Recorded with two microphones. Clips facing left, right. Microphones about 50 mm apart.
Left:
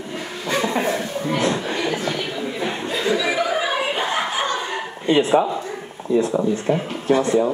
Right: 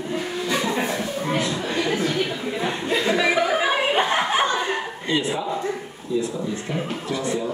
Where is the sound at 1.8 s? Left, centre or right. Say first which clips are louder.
Even; centre.